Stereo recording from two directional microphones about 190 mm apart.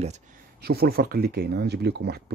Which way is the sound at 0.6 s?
55° right (ahead or behind).